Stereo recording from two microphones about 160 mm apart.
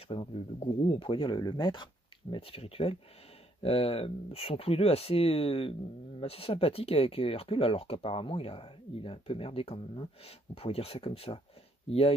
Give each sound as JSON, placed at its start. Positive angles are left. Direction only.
{"t": 0.1, "sound": "speech", "side_deg": 35}